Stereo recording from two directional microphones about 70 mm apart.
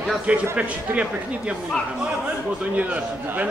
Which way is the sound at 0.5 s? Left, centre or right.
Centre.